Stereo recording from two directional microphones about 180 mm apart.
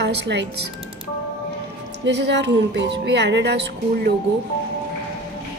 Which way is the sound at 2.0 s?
75° right (ahead or behind).